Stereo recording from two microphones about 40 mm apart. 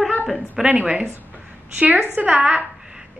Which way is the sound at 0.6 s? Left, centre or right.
Right.